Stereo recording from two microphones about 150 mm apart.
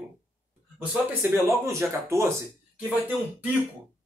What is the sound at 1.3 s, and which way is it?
Speech, 20° right (ahead or behind).